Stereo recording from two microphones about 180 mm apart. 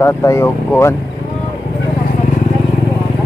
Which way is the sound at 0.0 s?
15° left (ahead or behind).